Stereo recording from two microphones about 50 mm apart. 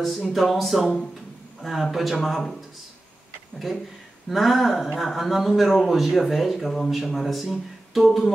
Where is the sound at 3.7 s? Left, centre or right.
Centre.